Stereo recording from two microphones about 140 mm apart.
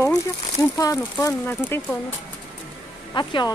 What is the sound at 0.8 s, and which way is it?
Speech, 25° left (ahead or behind).